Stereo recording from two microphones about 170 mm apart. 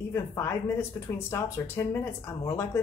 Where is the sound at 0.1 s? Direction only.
15° left (ahead or behind).